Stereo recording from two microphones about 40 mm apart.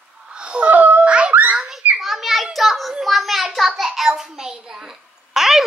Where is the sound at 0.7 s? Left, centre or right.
Right.